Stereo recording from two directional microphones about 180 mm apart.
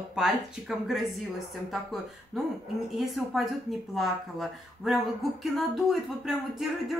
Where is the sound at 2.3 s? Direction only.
Centre (ahead or behind).